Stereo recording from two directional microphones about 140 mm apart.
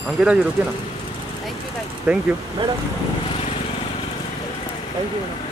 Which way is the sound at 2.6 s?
40° right (ahead or behind).